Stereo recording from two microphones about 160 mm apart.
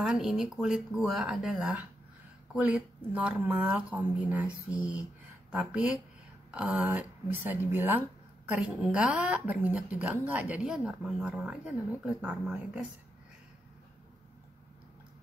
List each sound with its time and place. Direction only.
0.0 s a woman's voice: 5° right (ahead or behind)